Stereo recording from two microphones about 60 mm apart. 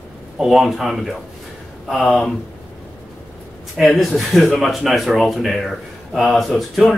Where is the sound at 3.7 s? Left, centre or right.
Centre.